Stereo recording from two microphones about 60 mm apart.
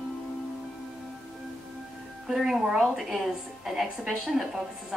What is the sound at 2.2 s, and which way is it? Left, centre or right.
A woman's voice, centre.